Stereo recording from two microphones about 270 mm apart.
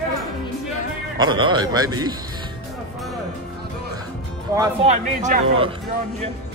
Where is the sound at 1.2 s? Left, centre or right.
Centre.